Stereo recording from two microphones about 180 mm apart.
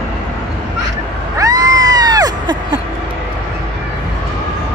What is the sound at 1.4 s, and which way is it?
Cat, 20° right (ahead or behind).